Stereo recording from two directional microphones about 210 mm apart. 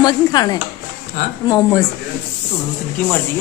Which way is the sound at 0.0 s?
20° left (ahead or behind).